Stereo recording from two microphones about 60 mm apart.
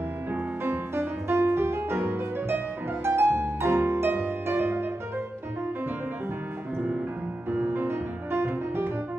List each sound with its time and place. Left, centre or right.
0.3 s music: right
7.4 s music: right